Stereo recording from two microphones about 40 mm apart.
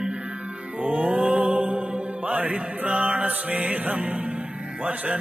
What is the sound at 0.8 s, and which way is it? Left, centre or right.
Mantra, right.